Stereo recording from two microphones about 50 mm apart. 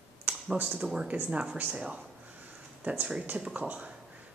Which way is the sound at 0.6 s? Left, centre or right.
Right.